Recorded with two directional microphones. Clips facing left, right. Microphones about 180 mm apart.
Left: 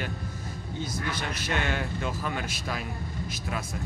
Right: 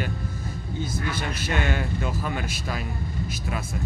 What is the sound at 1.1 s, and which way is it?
A man's voice, 5° right (ahead or behind).